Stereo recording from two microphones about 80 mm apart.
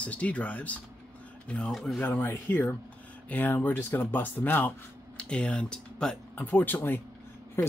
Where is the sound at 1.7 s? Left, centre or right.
Centre.